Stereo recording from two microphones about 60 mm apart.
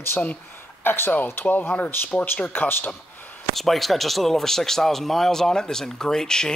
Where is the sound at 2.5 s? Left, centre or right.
Left.